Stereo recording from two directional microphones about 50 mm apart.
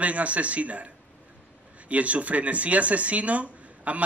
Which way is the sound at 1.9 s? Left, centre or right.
Right.